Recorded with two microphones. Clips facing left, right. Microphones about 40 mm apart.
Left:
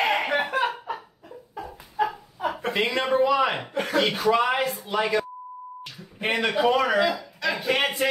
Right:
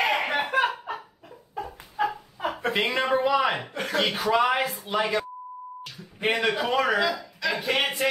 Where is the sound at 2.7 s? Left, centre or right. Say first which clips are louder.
Left 1 dB; right.